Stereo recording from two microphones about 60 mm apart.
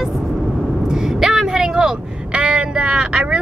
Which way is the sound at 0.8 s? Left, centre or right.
Centre.